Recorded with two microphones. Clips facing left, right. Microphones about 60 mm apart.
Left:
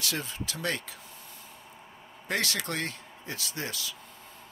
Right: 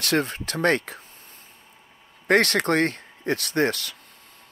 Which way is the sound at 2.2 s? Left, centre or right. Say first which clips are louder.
Right 12 dB; right.